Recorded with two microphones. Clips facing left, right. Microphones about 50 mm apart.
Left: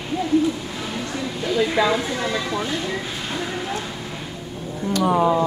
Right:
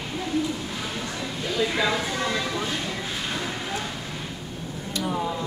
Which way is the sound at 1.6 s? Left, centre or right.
Centre.